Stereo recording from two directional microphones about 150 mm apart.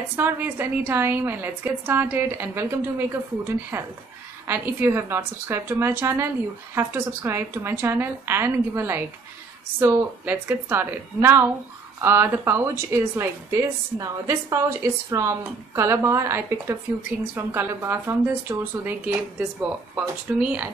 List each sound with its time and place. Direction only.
0.1 s a woman's voice: 15° right (ahead or behind)